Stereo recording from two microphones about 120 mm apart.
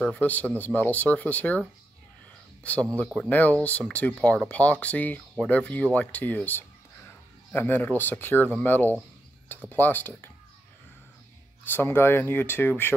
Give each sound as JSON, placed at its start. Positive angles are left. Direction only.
{"t": 0.1, "sound": "speech", "side_deg": 15}
{"t": 2.6, "sound": "speech", "side_deg": 10}
{"t": 11.7, "sound": "speech", "side_deg": 20}